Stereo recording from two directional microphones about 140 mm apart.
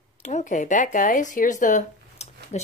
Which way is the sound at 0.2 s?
55° left (ahead or behind).